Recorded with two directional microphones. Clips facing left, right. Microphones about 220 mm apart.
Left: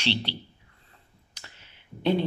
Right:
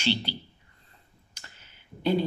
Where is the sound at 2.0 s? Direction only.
5° right (ahead or behind).